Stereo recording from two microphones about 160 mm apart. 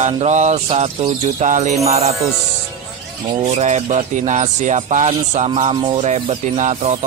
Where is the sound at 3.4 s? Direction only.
50° right (ahead or behind).